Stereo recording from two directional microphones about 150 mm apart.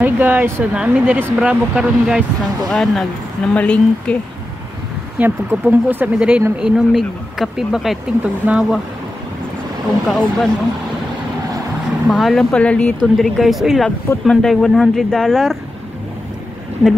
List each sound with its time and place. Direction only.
0.0 s a woman's voice: 10° right (ahead or behind); by 4.2 s 5° left (ahead or behind)
5.2 s speech: 10° right (ahead or behind)
10.0 s speech: 5° left (ahead or behind)
12.1 s speech: centre (ahead or behind)